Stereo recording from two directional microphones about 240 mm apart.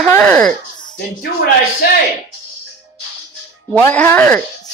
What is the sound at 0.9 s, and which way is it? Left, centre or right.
Speech, left.